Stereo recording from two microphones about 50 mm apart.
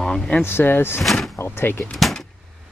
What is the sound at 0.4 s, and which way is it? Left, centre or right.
Speech, left.